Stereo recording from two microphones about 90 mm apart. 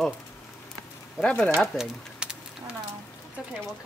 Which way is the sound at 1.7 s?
10° right (ahead or behind).